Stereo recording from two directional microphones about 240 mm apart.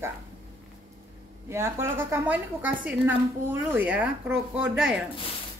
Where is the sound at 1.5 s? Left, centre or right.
Centre.